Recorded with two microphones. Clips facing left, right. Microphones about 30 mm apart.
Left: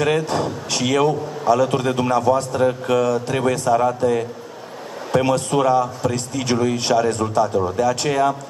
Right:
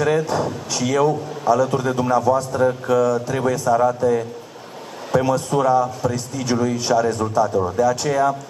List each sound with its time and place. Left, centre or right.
0.0 s a man's voice: left